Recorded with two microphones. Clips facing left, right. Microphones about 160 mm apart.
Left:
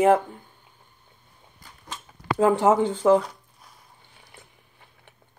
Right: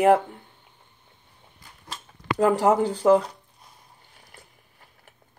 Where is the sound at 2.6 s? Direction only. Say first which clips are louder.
Left 1 dB; 40° right (ahead or behind).